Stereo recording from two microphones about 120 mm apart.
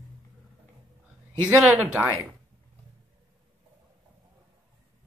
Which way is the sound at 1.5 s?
5° right (ahead or behind).